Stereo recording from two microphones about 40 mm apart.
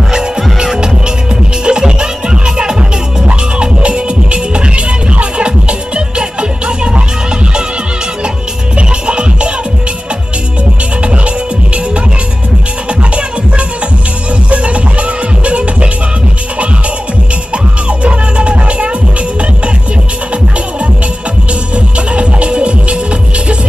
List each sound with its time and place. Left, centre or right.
1.6 s music: right
8.7 s music: right
14.5 s music: right
18.0 s music: right
21.7 s music: right